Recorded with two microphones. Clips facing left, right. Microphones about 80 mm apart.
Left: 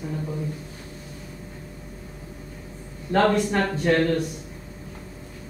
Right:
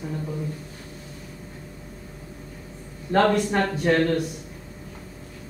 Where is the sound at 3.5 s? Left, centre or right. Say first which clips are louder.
Even; centre.